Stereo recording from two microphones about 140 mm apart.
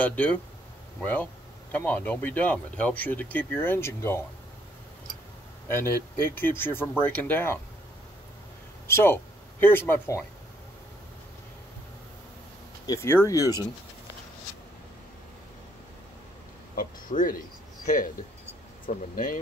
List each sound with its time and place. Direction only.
0.0 s speech: 10° left (ahead or behind)
5.7 s speech: 15° left (ahead or behind)
8.8 s speech: 15° left (ahead or behind)
12.8 s speech: 20° left (ahead or behind)
16.7 s speech: 80° left
17.8 s speech: 70° left (ahead or behind)